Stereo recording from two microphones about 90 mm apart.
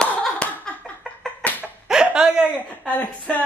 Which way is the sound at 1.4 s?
15° left (ahead or behind).